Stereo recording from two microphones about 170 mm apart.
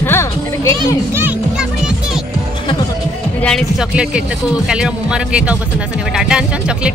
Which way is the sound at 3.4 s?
5° left (ahead or behind).